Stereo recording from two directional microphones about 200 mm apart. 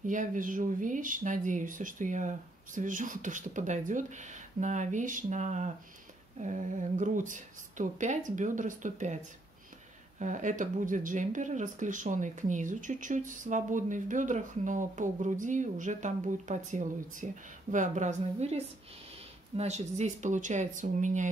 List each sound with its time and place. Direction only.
0.0 s speech: 40° right (ahead or behind)